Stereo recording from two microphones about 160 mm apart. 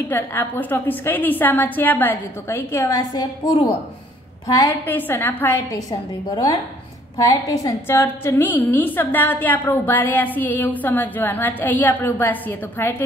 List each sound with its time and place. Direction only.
0.1 s a woman's voice: 10° left (ahead or behind)
4.8 s a woman's voice: 10° left (ahead or behind)
5.7 s a woman's voice: 25° left (ahead or behind)